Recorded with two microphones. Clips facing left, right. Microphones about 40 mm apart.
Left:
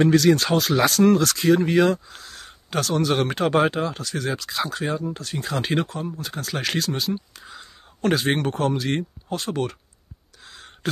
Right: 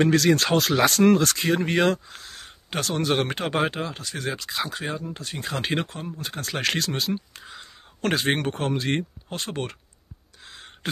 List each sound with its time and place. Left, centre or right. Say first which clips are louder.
0.0 s speech: left 2 dB; right
0.9 s speech: left 1 dB; right
1.7 s speech: left 3 dB; right
2.3 s speech: left 4 dB; right
3.4 s speech: left 5 dB; centre; by 9.8 s right
10.5 s a sound: even; right